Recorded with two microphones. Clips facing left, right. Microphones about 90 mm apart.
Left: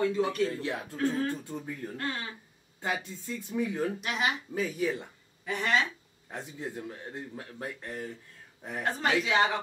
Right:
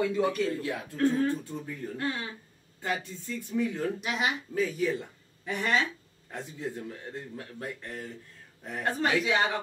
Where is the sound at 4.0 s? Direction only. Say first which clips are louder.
Even; centre (ahead or behind).